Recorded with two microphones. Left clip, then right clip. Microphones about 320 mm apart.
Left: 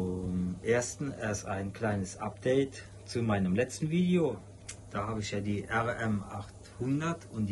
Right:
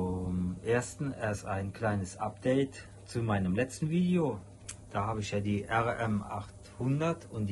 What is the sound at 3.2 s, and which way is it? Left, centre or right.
A man's voice, right.